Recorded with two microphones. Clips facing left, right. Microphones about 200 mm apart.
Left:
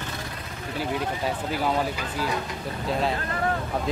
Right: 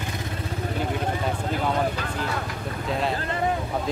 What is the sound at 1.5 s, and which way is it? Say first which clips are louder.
Speech: right 1 dB; 5° left (ahead or behind).